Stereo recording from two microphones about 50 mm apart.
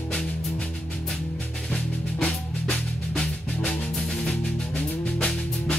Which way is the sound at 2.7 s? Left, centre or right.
Centre.